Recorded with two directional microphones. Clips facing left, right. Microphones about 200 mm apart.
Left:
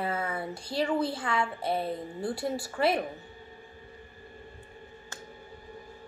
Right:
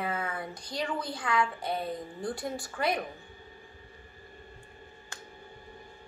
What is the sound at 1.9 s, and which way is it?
A woman's voice, 5° left (ahead or behind).